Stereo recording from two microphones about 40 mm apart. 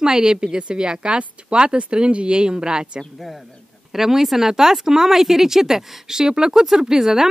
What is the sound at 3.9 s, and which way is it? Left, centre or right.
Speech, centre.